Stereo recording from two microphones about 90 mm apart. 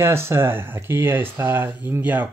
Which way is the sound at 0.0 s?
30° right (ahead or behind).